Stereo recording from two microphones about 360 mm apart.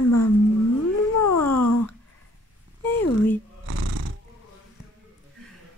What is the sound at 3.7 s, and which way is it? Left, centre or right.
Snoring, right.